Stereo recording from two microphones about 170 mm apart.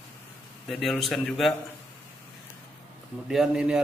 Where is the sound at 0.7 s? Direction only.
Centre (ahead or behind).